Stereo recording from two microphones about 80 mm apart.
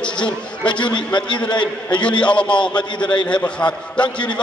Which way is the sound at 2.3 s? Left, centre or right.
Centre.